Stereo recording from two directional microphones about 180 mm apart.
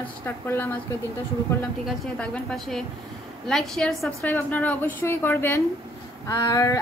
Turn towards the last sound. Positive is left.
turn(degrees=20)  # may be behind; listen again after turning